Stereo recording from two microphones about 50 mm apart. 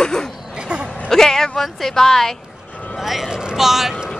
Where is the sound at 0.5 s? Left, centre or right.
Right.